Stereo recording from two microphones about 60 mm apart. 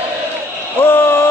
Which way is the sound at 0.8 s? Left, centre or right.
Left.